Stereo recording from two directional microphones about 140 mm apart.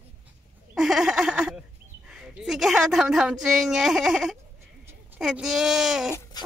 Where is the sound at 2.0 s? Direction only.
5° right (ahead or behind).